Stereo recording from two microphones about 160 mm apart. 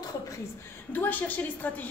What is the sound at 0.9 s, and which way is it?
Speech, 10° left (ahead or behind).